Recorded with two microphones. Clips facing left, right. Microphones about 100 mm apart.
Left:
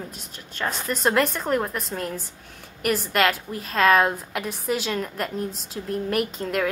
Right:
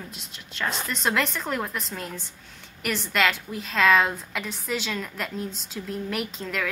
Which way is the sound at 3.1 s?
45° left (ahead or behind).